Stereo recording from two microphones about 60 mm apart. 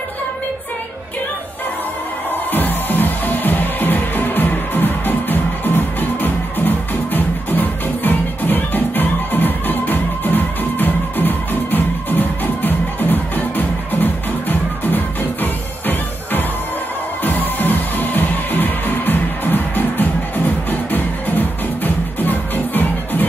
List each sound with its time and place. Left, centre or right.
2.5 s music: left